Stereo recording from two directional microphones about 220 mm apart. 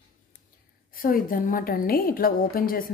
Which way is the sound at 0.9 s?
40° left (ahead or behind).